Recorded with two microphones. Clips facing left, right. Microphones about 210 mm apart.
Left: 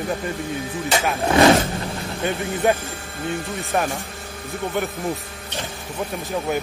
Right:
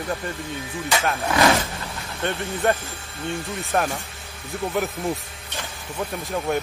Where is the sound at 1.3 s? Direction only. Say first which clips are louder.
Left 6 dB; 30° left (ahead or behind).